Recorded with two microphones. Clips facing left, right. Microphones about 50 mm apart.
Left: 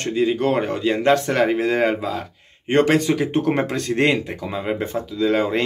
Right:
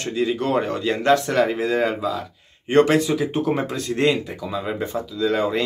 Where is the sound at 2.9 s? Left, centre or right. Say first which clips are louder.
Left 1 dB; left.